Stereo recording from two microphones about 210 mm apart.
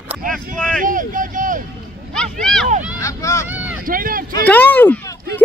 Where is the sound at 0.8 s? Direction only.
40° right (ahead or behind).